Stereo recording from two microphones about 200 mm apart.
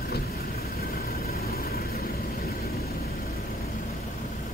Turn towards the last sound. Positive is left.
turn(degrees=50)  # may be behind; listen again after turning